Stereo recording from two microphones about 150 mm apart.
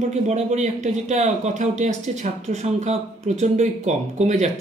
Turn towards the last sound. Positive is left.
turn(degrees=-50)  # may be behind; listen again after turning